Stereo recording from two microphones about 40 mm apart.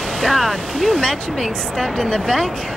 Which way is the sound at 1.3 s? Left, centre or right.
Centre.